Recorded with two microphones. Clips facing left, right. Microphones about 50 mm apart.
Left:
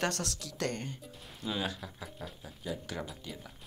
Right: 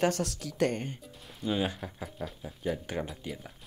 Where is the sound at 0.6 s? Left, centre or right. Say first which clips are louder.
Right 7 dB; right.